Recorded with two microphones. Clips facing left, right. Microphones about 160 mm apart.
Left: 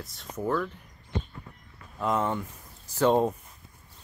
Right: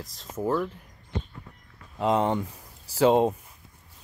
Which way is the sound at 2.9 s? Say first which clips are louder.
Right 3 dB; 10° right (ahead or behind).